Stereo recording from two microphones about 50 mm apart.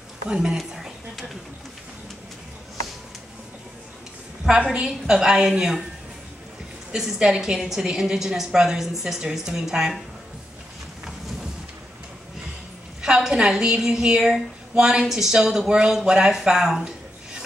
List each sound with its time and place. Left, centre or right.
0.3 s a woman's voice: centre
0.6 s a sound: centre
4.7 s a woman's voice: centre
6.9 s a woman's voice: centre
13.0 s a woman's voice: centre